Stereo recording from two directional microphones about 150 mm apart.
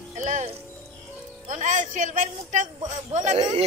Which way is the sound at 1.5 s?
55° right (ahead or behind).